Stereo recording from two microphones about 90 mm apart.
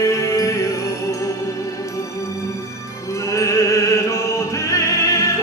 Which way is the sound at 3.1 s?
35° left (ahead or behind).